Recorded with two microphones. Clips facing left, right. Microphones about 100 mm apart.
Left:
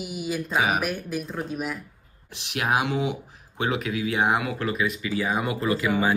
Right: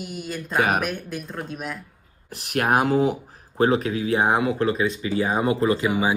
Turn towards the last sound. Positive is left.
turn(degrees=-15)  # may be behind; listen again after turning